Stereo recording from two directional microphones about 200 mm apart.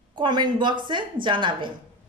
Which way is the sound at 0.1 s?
20° right (ahead or behind).